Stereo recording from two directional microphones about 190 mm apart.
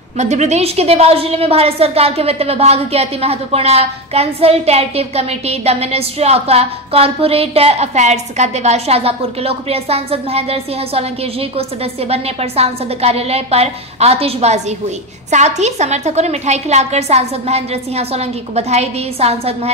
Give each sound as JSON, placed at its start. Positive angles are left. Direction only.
{"t": 0.2, "sound": "a woman's voice", "side_deg": -35}